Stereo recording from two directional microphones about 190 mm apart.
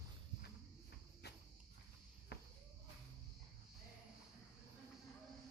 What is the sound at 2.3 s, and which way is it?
Cricket, 60° left (ahead or behind).